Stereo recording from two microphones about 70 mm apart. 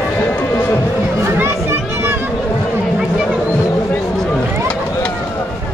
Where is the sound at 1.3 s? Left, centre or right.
Right.